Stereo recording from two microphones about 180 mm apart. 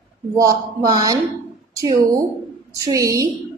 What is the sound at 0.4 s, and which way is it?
Speech, 20° right (ahead or behind).